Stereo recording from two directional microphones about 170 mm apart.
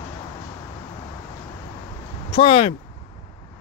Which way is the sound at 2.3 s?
35° left (ahead or behind).